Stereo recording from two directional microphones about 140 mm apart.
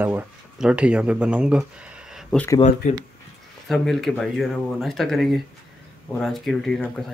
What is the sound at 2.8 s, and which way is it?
Speech, 65° left (ahead or behind).